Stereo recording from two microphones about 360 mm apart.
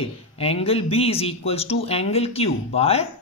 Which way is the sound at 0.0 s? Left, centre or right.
Centre.